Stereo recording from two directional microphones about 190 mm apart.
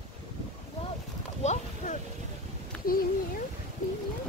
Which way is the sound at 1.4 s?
35° left (ahead or behind).